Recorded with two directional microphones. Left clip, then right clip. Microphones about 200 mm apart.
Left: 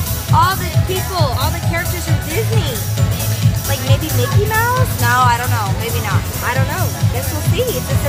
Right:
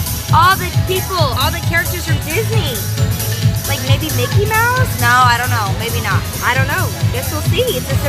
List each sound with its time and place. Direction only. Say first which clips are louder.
0.3 s music: right 3 dB; 15° right (ahead or behind)
1.1 s speech: right 3 dB; 10° right (ahead or behind)
4.5 s speech: right 3 dB; 15° right (ahead or behind)